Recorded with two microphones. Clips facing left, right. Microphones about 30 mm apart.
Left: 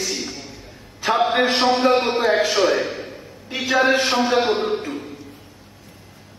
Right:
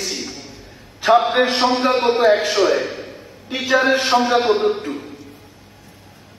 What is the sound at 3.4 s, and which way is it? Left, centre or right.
Speech, right.